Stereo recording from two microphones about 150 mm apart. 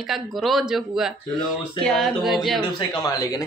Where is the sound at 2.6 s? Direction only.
30° left (ahead or behind).